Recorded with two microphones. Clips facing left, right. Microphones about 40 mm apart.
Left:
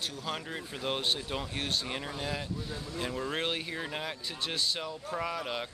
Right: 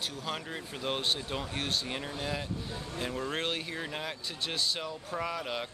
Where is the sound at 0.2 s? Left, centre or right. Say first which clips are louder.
Even; centre.